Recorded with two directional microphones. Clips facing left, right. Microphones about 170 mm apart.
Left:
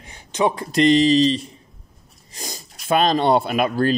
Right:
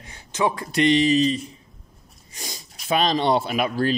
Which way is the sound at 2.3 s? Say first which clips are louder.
Left 3 dB; 45° left (ahead or behind).